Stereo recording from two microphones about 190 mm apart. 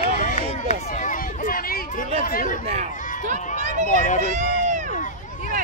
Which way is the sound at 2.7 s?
35° right (ahead or behind).